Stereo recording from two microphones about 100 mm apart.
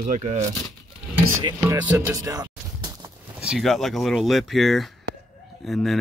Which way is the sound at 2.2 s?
35° right (ahead or behind).